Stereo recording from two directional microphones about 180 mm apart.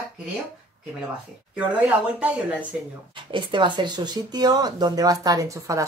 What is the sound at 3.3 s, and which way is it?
Speech, 25° right (ahead or behind).